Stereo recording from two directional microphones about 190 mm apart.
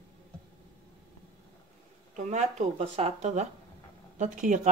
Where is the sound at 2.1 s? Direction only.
40° right (ahead or behind).